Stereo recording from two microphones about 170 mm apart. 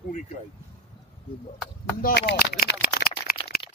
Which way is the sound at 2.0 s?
65° left (ahead or behind).